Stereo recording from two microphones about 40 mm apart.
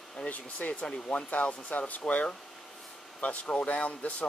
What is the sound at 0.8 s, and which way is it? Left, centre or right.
Speech, left.